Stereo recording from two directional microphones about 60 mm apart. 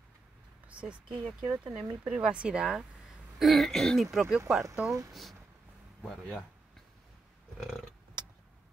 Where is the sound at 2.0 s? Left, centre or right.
Centre.